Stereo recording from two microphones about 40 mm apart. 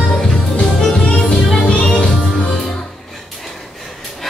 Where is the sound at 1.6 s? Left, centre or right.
Left.